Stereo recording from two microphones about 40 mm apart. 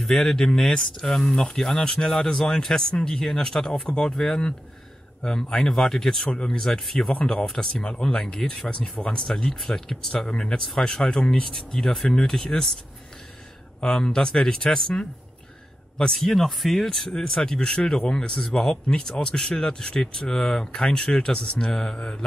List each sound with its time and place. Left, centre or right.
0.0 s speech: centre
7.7 s speech: left
8.6 s speech: left
10.1 s speech: left
14.0 s speech: centre
16.3 s speech: centre
16.9 s speech: centre